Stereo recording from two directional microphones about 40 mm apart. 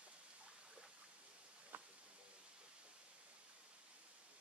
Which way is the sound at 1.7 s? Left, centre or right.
Right.